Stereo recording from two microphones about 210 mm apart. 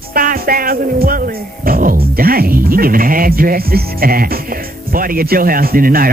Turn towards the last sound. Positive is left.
turn(degrees=-45)  # may be behind; listen again after turning